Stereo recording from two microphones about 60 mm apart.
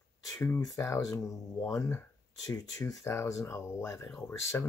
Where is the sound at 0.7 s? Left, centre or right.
Left.